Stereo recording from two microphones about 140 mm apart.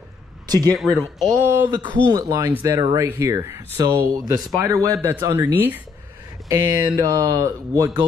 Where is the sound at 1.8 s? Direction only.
30° right (ahead or behind).